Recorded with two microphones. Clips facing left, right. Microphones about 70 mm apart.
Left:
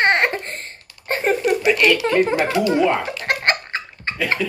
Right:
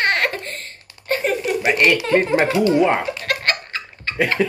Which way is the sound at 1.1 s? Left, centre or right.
Left.